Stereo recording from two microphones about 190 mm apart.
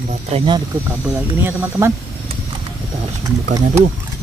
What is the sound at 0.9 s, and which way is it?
Speech, 10° right (ahead or behind).